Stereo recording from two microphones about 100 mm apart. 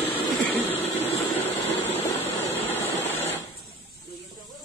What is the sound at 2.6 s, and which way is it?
Vehicle, 20° left (ahead or behind).